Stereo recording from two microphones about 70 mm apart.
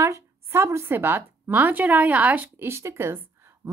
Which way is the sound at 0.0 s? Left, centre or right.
Right.